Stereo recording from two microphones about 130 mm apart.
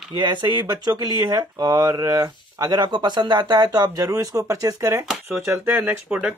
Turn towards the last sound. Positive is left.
turn(degrees=-10)  # may be behind; listen again after turning